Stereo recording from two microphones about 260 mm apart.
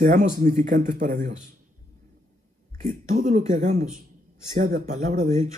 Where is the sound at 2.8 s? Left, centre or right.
Right.